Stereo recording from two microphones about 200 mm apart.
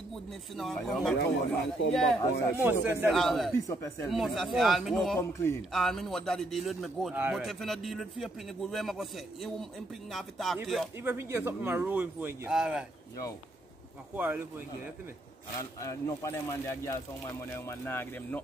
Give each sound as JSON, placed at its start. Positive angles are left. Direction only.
{"t": 0.1, "sound": "a man's voice", "side_deg": 0}
{"t": 1.8, "sound": "speech", "side_deg": 70}
{"t": 2.5, "sound": "a man's voice", "side_deg": -10}
{"t": 3.5, "sound": "speech", "side_deg": 15}
{"t": 4.1, "sound": "a man's voice", "side_deg": 0}
{"t": 5.2, "sound": "speech", "side_deg": 10}
{"t": 5.7, "sound": "a man's voice", "side_deg": 0}
{"t": 11.0, "sound": "speech", "side_deg": -10}
{"t": 14.1, "sound": "speech", "side_deg": -10}
{"t": 15.8, "sound": "speech", "side_deg": 15}